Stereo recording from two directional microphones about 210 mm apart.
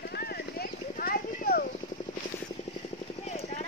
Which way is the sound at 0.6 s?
45° left (ahead or behind).